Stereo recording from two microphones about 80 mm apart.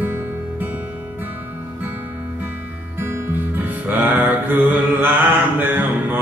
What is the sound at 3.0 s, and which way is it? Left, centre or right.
Music, right.